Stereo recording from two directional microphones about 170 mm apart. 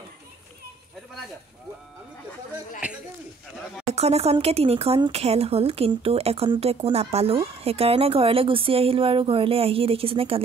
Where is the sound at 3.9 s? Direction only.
40° right (ahead or behind).